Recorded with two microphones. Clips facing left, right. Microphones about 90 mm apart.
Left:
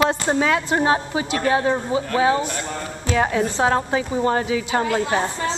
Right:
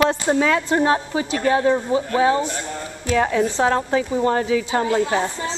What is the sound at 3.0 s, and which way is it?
A woman's voice, 30° left (ahead or behind).